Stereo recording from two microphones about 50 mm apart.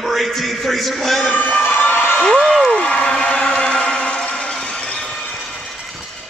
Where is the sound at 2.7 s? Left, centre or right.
Left.